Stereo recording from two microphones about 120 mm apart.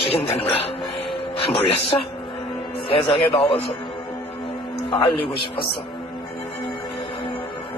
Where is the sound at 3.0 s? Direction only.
50° left (ahead or behind).